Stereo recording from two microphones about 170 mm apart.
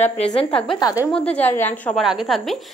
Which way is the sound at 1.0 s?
5° left (ahead or behind).